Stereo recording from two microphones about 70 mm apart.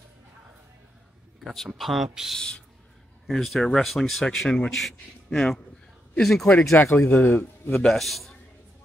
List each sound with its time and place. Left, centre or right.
1.4 s a man's voice: centre
2.3 s speech: centre
3.3 s a man's voice: centre
6.8 s a man's voice: left
7.7 s a man's voice: centre